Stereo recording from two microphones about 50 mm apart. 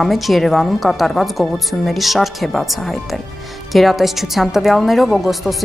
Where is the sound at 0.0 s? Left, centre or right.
Centre.